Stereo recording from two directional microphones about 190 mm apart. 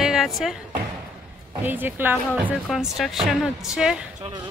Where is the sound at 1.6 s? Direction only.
10° right (ahead or behind).